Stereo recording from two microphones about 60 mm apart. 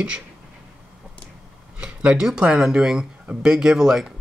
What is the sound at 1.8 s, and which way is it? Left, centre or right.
Speech, centre.